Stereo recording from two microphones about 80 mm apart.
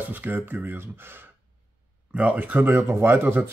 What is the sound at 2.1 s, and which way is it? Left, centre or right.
A man's voice, centre.